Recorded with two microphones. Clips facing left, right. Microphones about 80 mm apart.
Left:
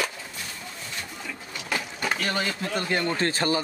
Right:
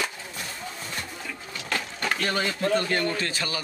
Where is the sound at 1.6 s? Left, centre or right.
Centre.